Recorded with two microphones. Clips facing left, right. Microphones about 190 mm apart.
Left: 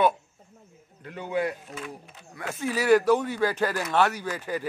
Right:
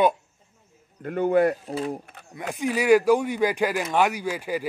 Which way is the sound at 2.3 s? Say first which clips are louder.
Right 3 dB; 15° right (ahead or behind).